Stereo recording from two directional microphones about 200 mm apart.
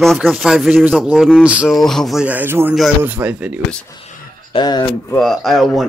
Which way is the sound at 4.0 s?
25° left (ahead or behind).